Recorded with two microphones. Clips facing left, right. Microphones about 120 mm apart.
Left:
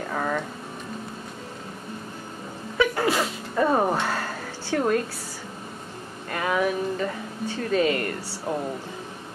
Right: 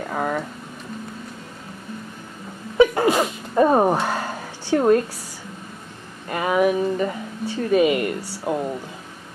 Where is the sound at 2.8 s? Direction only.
20° right (ahead or behind).